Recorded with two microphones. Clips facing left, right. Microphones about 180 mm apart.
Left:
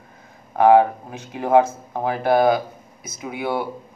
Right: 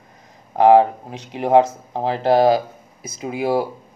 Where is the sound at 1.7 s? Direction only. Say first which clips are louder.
Right 1 dB; 30° right (ahead or behind).